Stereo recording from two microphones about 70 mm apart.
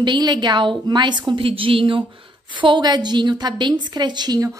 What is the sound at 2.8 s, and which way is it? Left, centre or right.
A woman's voice, right.